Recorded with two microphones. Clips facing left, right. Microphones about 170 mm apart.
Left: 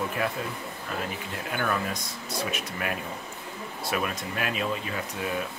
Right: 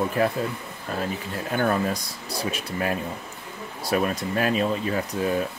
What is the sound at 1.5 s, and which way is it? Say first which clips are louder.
Speech: right 6 dB; 35° right (ahead or behind).